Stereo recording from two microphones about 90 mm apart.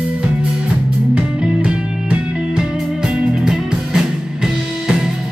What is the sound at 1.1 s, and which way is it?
Music, 15° right (ahead or behind).